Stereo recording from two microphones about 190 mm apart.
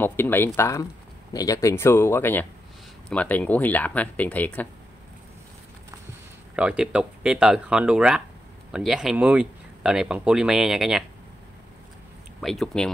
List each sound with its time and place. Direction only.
0.0 s speech: 10° left (ahead or behind)
6.5 s speech: 5° right (ahead or behind)
12.4 s speech: centre (ahead or behind)